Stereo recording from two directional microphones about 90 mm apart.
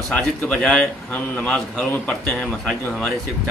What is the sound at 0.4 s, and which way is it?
Speech, 10° left (ahead or behind).